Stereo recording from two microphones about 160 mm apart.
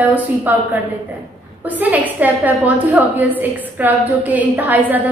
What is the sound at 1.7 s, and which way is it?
Speech, 10° right (ahead or behind).